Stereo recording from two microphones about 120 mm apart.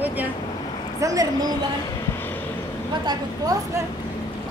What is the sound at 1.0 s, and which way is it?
Speech, 30° right (ahead or behind).